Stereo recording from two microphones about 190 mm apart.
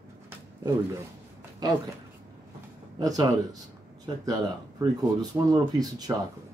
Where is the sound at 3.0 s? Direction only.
20° right (ahead or behind).